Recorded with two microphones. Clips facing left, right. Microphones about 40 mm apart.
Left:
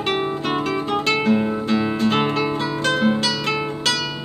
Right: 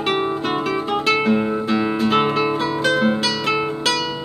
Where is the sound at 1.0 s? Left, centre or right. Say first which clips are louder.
Right 2 dB; centre.